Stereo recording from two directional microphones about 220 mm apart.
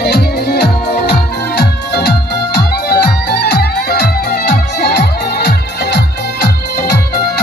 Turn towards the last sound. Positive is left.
turn(degrees=45)  # may be behind; listen again after turning